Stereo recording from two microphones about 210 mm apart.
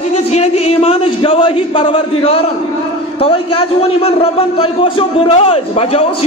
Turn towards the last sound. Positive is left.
turn(degrees=30)  # may be behind; listen again after turning